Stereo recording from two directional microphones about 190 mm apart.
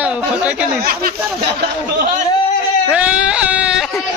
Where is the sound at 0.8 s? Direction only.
50° right (ahead or behind).